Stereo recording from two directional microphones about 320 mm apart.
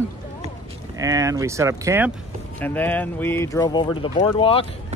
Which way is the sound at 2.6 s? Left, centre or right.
Centre.